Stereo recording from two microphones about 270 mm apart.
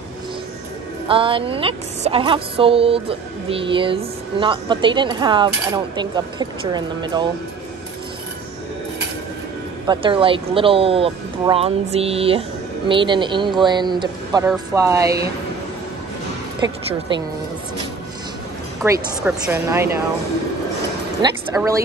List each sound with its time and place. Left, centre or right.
1.0 s a woman's voice: centre
9.8 s a woman's voice: centre
17.1 s speech: centre
18.9 s speech: centre
21.2 s speech: centre